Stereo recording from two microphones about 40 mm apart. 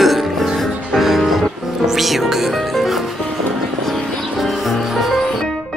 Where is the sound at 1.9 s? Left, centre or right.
Centre.